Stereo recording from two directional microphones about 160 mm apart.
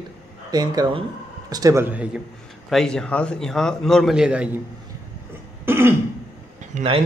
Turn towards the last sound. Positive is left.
turn(degrees=-40)  # may be behind; listen again after turning